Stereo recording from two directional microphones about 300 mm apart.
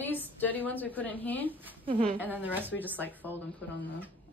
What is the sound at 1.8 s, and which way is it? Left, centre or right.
Speech, centre.